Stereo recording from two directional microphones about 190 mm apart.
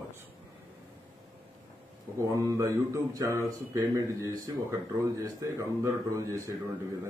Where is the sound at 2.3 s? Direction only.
15° right (ahead or behind).